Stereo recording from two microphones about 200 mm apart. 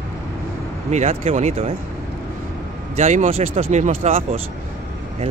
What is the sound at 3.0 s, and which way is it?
Speech, 35° right (ahead or behind).